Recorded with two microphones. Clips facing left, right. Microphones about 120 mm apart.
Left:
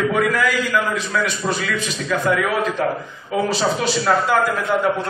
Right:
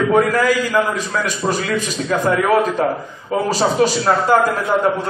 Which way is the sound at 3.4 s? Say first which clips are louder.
Right 6 dB; 40° right (ahead or behind).